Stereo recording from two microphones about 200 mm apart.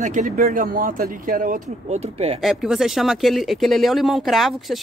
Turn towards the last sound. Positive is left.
turn(degrees=0)  # may be behind; listen again after turning